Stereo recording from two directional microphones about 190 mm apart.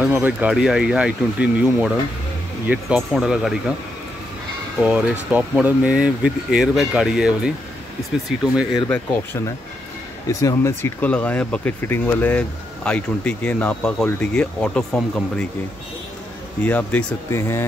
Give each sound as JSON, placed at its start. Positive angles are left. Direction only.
{"t": 0.0, "sound": "speech", "side_deg": -10}
{"t": 5.3, "sound": "speech", "side_deg": -10}
{"t": 8.7, "sound": "speech", "side_deg": 10}
{"t": 16.6, "sound": "speech", "side_deg": 10}